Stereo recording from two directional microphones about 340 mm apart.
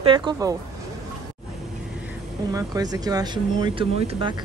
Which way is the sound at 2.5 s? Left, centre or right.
Centre.